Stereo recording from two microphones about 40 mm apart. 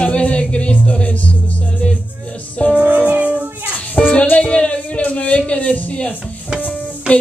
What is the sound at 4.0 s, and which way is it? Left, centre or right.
Music, left.